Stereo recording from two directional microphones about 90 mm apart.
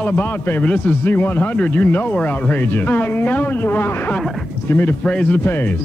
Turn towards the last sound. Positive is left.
turn(degrees=25)  # may be behind; listen again after turning